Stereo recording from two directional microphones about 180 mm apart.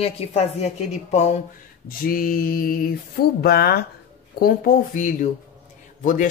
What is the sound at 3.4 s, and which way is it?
Speech, 60° left (ahead or behind).